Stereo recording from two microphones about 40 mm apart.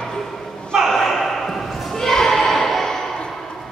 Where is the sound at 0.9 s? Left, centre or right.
Centre.